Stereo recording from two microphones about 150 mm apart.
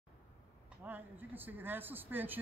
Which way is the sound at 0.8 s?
10° right (ahead or behind).